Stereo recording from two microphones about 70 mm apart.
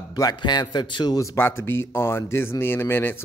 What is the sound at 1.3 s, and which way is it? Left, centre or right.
Speech, left.